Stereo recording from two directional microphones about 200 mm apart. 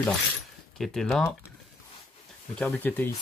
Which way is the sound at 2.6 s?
10° left (ahead or behind).